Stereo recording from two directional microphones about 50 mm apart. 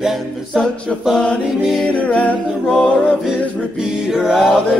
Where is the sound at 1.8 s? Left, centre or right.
Left.